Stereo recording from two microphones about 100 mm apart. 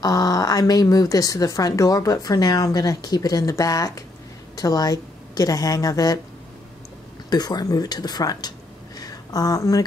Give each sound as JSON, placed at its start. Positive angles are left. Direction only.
{"t": 0.0, "sound": "a woman's voice", "side_deg": 35}
{"t": 7.2, "sound": "speech", "side_deg": 40}